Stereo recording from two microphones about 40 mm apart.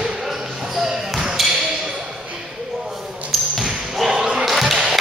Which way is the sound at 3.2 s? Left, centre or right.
Centre.